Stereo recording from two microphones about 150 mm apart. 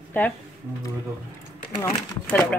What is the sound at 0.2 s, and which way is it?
Speech, 10° left (ahead or behind).